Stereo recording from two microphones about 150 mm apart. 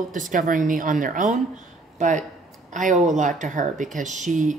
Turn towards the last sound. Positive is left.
turn(degrees=-55)  # may be behind; listen again after turning